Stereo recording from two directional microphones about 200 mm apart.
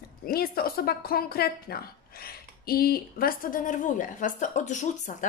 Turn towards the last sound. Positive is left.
turn(degrees=40)  # may be behind; listen again after turning